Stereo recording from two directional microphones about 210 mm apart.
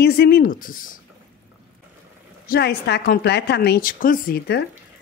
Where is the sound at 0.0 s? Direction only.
50° left (ahead or behind).